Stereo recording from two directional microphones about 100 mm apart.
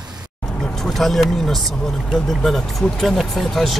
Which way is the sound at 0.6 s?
5° left (ahead or behind).